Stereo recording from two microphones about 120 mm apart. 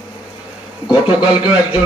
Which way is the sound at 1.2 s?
10° right (ahead or behind).